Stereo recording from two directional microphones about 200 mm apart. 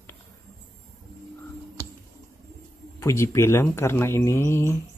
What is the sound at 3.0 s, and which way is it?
Speech, 15° left (ahead or behind).